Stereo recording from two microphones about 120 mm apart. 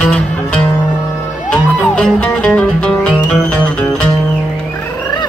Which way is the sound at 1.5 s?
10° left (ahead or behind).